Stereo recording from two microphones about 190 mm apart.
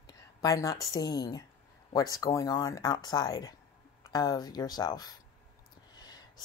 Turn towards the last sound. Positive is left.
turn(degrees=20)  # may be behind; listen again after turning